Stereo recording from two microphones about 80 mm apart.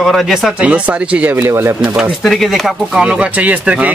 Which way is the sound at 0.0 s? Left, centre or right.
Centre.